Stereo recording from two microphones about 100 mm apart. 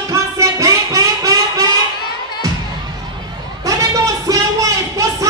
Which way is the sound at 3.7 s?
35° right (ahead or behind).